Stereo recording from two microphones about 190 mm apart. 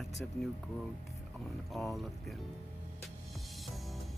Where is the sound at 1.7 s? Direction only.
Centre (ahead or behind).